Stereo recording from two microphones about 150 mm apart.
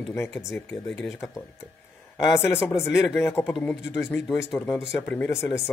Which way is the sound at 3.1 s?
15° left (ahead or behind).